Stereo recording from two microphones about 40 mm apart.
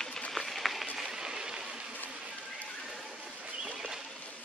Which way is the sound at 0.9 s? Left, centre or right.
Centre.